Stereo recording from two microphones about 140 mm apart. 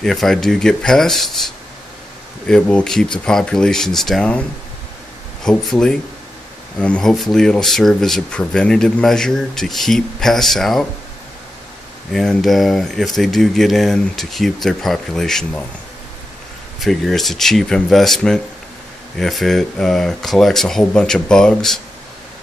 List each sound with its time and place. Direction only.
0.0 s speech: 5° left (ahead or behind)
12.1 s speech: centre (ahead or behind)
16.8 s speech: centre (ahead or behind)